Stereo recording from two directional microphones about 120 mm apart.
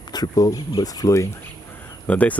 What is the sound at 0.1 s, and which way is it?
Speech, 30° left (ahead or behind).